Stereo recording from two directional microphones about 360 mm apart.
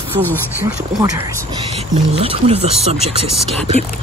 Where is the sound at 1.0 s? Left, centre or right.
Centre.